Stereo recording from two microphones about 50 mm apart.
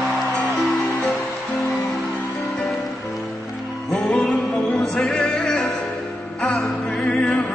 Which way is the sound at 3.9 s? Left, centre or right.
Left.